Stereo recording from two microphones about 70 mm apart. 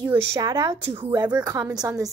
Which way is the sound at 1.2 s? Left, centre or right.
Right.